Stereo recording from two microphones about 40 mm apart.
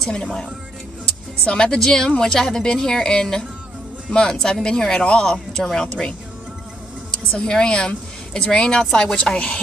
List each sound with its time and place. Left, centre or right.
0.1 s speech: centre
7.4 s speech: left